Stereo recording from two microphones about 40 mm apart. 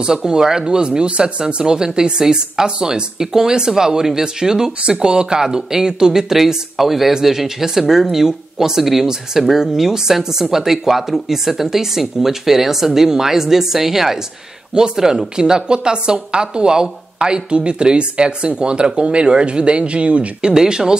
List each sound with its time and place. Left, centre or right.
0.0 s speech: centre
20.5 s speech: centre